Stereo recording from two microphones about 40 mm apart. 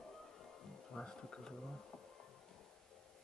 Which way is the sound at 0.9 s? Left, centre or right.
Centre.